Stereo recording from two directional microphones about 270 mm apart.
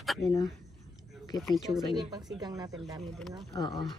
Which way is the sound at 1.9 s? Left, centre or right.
Centre.